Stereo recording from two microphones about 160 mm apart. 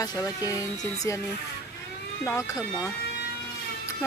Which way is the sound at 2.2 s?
15° left (ahead or behind).